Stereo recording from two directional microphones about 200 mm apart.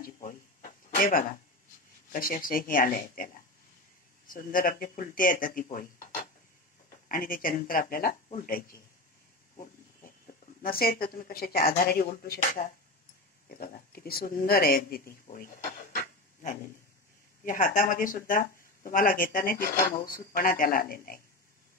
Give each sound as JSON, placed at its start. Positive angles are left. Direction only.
{"t": 0.0, "sound": "a sound", "side_deg": 40}
{"t": 2.1, "sound": "speech", "side_deg": 45}
{"t": 4.3, "sound": "speech", "side_deg": 45}
{"t": 9.6, "sound": "speech", "side_deg": 35}
{"t": 15.2, "sound": "a sound", "side_deg": 45}
{"t": 17.5, "sound": "speech", "side_deg": 40}